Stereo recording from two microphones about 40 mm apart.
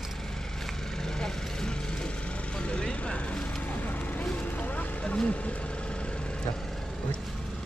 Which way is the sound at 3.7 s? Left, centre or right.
Left.